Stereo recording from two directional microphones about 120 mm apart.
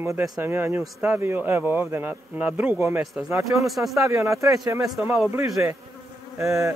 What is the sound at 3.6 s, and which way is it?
Speech, centre (ahead or behind).